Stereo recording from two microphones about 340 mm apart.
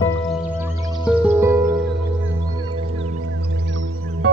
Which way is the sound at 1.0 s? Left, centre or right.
Centre.